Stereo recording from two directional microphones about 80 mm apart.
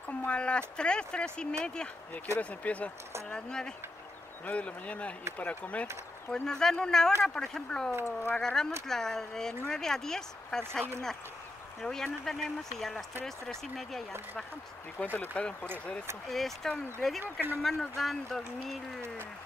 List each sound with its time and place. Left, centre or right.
0.2 s speech: centre
6.3 s speech: centre
8.0 s speech: left
8.4 s speech: centre
11.8 s speech: centre
15.1 s speech: centre
16.3 s speech: centre
17.2 s speech: right
17.6 s speech: centre